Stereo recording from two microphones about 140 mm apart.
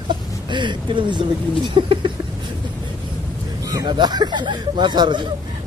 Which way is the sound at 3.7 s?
30° right (ahead or behind).